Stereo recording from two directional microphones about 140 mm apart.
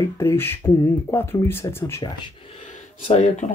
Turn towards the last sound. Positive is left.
turn(degrees=55)  # may be behind; listen again after turning